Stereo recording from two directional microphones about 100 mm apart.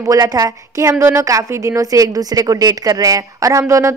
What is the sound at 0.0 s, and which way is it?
A woman's voice, 35° right (ahead or behind).